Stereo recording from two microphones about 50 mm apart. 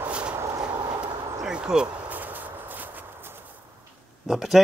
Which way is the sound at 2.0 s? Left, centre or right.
Right.